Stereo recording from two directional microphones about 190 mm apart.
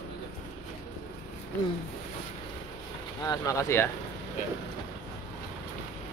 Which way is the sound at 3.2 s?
20° left (ahead or behind).